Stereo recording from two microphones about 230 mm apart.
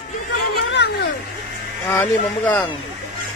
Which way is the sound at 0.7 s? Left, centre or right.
Left.